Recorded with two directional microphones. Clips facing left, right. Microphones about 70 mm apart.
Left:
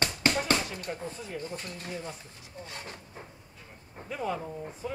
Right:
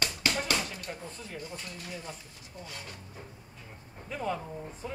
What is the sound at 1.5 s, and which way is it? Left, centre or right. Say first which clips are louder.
Speech: left 3 dB; left.